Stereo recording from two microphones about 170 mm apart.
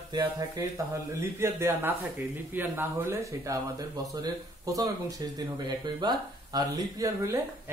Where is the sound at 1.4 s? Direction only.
15° right (ahead or behind).